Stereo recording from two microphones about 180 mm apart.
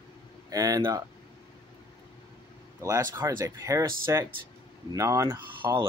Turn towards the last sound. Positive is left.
turn(degrees=-15)  # may be behind; listen again after turning